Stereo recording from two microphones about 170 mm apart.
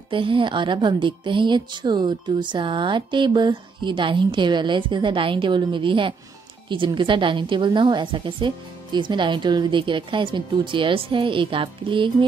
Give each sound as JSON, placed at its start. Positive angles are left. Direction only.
{"t": 0.1, "sound": "a woman's voice", "side_deg": -30}